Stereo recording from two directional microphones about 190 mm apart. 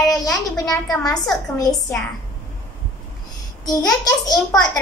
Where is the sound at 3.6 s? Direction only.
20° left (ahead or behind).